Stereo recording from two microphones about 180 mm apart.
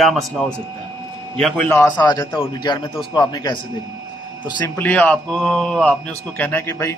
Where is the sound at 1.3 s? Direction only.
5° left (ahead or behind); by 3.6 s 20° left (ahead or behind).